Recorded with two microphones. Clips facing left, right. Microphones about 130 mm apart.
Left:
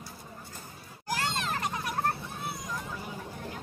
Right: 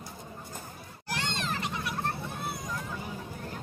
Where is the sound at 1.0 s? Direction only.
45° left (ahead or behind).